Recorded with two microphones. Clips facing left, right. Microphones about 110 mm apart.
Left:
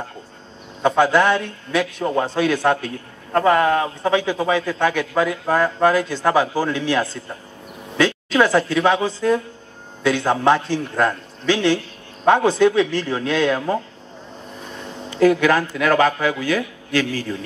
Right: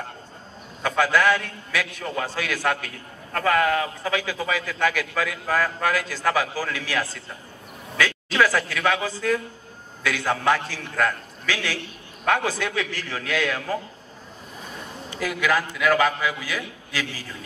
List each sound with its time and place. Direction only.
0.8 s a man's voice: 25° left (ahead or behind)
15.1 s a man's voice: 30° left (ahead or behind)